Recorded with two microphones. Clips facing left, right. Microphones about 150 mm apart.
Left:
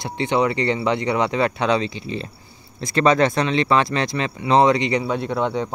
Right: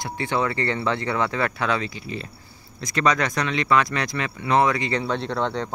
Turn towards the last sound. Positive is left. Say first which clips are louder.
# left 3 dB
turn(degrees=10)  # may be behind; listen again after turning